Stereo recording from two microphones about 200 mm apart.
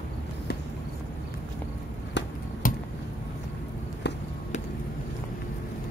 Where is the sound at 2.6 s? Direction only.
45° left (ahead or behind).